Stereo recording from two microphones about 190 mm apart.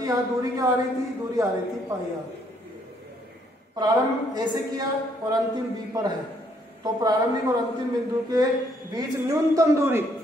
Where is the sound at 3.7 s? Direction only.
20° right (ahead or behind).